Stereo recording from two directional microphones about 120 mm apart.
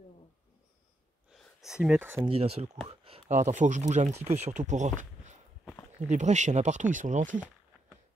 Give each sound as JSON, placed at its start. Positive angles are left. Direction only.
{"t": 1.3, "sound": "a sound", "side_deg": 0}
{"t": 2.0, "sound": "speech", "side_deg": -15}
{"t": 2.2, "sound": "speech", "side_deg": -55}
{"t": 3.3, "sound": "speech", "side_deg": -80}
{"t": 6.0, "sound": "speech", "side_deg": -80}